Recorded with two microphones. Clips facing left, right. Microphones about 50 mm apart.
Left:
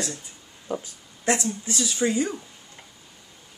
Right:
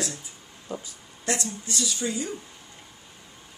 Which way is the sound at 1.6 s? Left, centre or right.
Left.